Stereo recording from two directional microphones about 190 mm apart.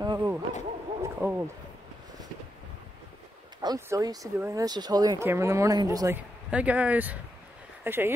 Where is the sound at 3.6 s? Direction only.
20° right (ahead or behind).